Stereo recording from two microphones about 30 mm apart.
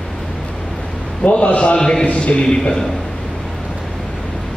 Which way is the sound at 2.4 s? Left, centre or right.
Left.